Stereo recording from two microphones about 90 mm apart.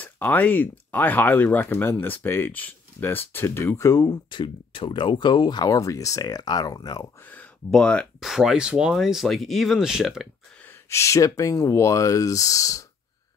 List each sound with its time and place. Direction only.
0.0 s speech: 20° left (ahead or behind); by 4.2 s 40° left (ahead or behind)
4.3 s speech: 70° left (ahead or behind); by 7.1 s 45° left (ahead or behind)
7.2 s speech: 20° left (ahead or behind)
8.2 s speech: 5° right (ahead or behind)
10.9 s speech: 35° left (ahead or behind)